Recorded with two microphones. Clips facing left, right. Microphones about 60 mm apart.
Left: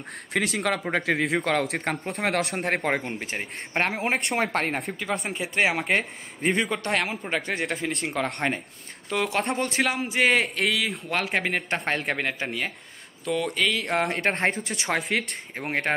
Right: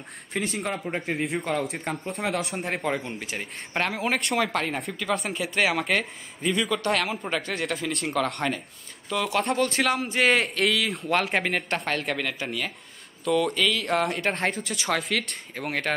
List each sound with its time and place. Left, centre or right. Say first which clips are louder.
0.3 s speech: left 3 dB; left
3.2 s speech: left 2 dB; left
5.2 s speech: left 3 dB; left
6.9 s speech: right 1 dB; centre
7.9 s a man's voice: right 1 dB; centre
9.1 s speech: right 1 dB; left
9.8 s a man's voice: even; centre
12.1 s speech: left 1 dB; left
13.2 s speech: right 2 dB; centre
14.0 s speech: left 1 dB; left